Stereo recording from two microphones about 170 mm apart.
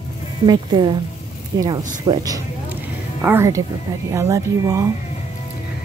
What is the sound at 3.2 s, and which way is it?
A woman's voice, 15° right (ahead or behind).